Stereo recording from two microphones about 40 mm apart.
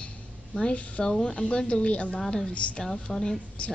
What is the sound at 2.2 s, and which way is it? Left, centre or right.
Speech, centre.